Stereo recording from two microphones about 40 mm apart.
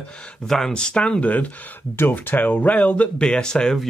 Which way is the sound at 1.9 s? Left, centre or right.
Left.